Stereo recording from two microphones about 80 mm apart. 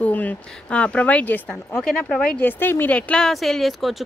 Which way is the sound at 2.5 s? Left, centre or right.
Left.